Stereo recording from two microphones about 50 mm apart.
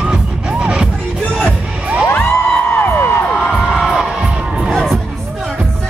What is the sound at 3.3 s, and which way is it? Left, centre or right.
Crowd, centre.